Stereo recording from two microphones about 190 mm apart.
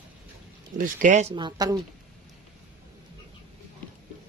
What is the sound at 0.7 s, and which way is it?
Speech, 45° right (ahead or behind).